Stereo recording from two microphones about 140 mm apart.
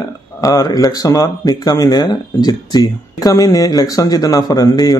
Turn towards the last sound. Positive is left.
turn(degrees=25)  # may be behind; listen again after turning